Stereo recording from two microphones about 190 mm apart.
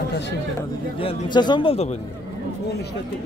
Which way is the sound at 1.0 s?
25° left (ahead or behind).